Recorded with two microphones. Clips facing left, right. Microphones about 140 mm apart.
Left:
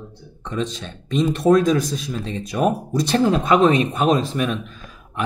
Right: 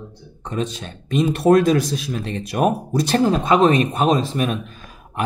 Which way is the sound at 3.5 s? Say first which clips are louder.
Right 1 dB; 35° right (ahead or behind).